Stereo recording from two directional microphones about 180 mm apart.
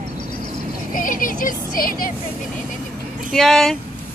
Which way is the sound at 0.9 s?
50° left (ahead or behind).